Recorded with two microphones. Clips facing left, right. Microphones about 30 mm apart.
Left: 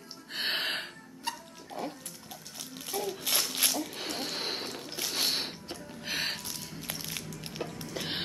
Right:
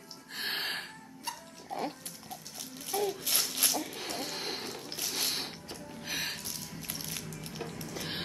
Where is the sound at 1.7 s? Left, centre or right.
Right.